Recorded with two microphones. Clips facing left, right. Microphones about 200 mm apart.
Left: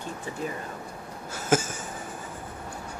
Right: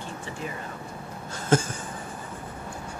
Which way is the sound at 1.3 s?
5° left (ahead or behind).